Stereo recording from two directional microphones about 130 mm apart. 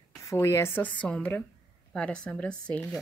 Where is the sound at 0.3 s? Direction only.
20° left (ahead or behind).